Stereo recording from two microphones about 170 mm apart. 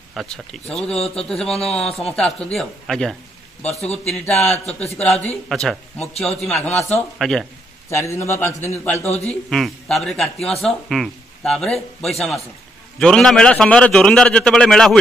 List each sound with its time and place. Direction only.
0.1 s speech: centre (ahead or behind)
3.8 s speech: 40° left (ahead or behind)
4.7 s a man's voice: 10° left (ahead or behind)
7.9 s a man's voice: 15° left (ahead or behind)
9.3 s speech: 5° left (ahead or behind)